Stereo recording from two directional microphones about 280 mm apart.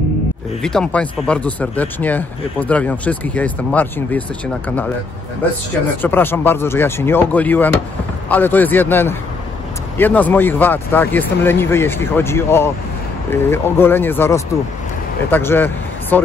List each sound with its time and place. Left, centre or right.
0.6 s speech: centre
6.0 s speech: centre